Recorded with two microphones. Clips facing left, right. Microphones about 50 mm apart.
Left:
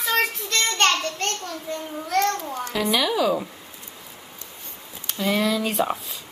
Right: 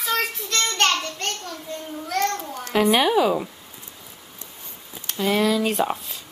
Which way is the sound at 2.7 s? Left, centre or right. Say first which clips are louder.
Right 5 dB; right.